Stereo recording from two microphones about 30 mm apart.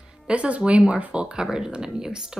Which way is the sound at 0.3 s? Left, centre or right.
Right.